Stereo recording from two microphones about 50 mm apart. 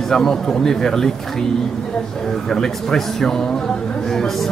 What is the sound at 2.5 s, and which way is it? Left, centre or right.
Speech, centre.